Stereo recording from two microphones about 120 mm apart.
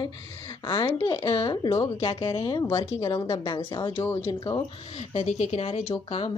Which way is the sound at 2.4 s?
30° left (ahead or behind).